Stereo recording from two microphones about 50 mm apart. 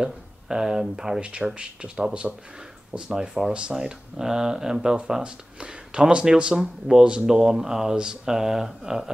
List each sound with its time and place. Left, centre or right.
0.0 s speech: centre
1.2 s speech: right
3.1 s speech: centre